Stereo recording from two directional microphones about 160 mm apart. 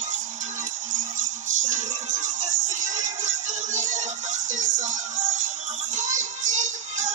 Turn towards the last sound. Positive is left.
turn(degrees=-50)  # may be behind; listen again after turning